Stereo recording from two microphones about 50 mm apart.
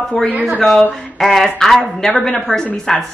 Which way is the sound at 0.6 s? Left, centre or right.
Centre.